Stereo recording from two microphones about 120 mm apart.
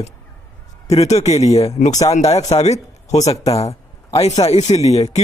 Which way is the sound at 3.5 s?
60° left (ahead or behind).